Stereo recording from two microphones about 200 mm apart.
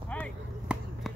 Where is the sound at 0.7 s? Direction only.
5° right (ahead or behind).